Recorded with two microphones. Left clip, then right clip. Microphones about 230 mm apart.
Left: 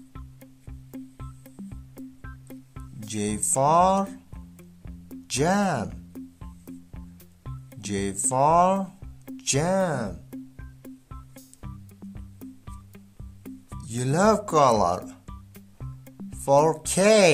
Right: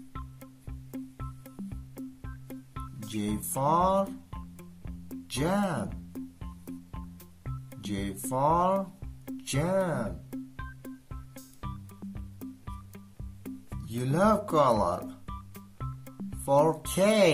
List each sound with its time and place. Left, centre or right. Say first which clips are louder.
0.1 s music: right 3 dB; centre
3.1 s speech: left 7 dB; left
4.3 s music: right 3 dB; centre
5.3 s speech: left 6 dB; left
5.9 s music: even; centre
7.8 s speech: left 7 dB; left
10.3 s music: right 2 dB; centre
13.9 s speech: left 4 dB; left
15.2 s music: right 4 dB; centre
16.4 s speech: left 4 dB; left